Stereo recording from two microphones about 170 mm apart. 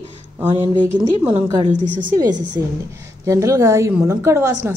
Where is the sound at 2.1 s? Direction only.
25° right (ahead or behind).